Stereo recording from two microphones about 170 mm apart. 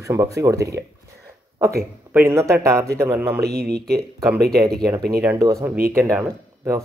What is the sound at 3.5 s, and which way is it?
Speech, 70° right (ahead or behind).